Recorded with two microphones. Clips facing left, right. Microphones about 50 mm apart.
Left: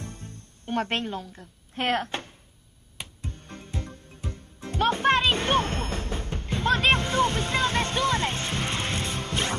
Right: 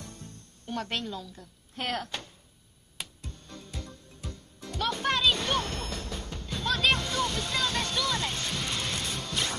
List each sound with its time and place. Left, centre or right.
0.0 s music: left